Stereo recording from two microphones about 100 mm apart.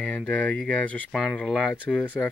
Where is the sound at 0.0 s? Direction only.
10° left (ahead or behind).